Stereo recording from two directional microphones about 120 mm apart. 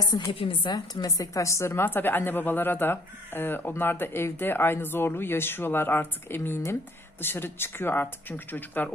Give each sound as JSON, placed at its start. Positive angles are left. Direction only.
{"t": 0.0, "sound": "a woman's voice", "side_deg": 30}
{"t": 0.3, "sound": "a woman's voice", "side_deg": 50}
{"t": 0.7, "sound": "a woman's voice", "side_deg": 30}